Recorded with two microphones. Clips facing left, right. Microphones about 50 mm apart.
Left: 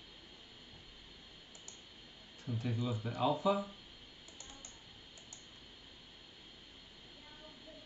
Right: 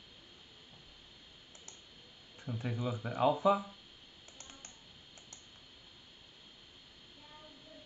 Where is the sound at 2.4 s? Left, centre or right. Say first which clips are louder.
Right 1 dB; right.